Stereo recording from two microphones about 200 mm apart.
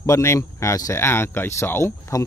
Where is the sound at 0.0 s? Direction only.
15° left (ahead or behind).